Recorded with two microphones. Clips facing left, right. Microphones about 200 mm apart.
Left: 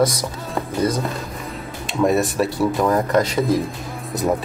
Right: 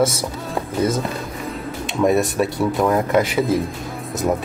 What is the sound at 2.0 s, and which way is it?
Speech, centre (ahead or behind).